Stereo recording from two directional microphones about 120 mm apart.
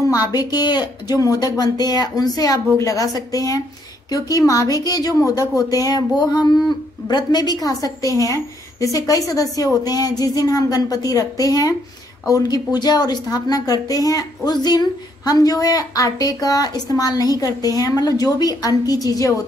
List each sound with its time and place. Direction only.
0.3 s a woman's voice: 35° left (ahead or behind)